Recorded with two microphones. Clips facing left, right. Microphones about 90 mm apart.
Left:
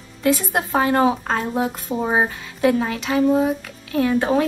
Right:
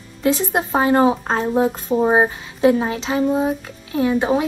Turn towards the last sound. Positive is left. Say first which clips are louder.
# even
turn(degrees=-15)  # may be behind; listen again after turning